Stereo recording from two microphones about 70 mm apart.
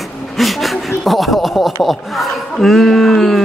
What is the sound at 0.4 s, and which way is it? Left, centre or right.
Speech, centre.